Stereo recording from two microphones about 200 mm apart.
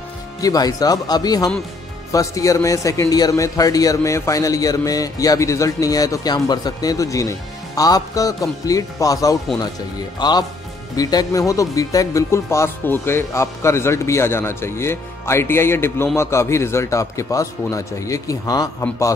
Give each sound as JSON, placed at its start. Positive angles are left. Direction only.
{"t": 0.4, "sound": "a man's voice", "side_deg": 20}